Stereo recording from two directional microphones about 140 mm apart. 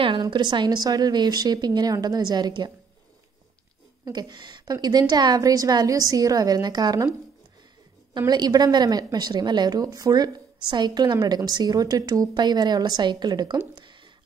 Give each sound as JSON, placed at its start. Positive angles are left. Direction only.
{"t": 0.0, "sound": "a woman's voice", "side_deg": -35}
{"t": 4.0, "sound": "a woman's voice", "side_deg": -30}
{"t": 8.3, "sound": "a woman's voice", "side_deg": -30}